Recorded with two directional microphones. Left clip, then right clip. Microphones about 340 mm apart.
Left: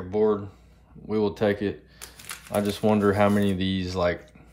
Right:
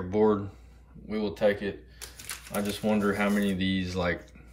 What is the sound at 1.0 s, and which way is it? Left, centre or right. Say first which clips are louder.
Speech: left 3 dB; centre.